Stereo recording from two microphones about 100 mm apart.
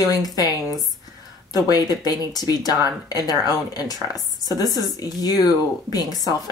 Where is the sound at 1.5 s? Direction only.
40° left (ahead or behind).